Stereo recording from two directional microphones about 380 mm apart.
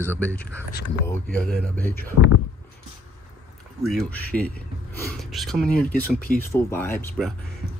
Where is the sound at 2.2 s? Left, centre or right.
Left.